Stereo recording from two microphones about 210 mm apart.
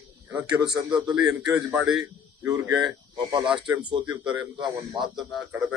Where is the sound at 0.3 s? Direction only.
10° right (ahead or behind).